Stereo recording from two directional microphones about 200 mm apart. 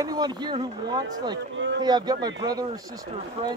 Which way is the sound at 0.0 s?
20° right (ahead or behind).